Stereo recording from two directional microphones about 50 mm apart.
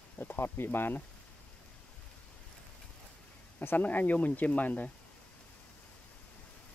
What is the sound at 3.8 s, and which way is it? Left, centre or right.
Speech, left.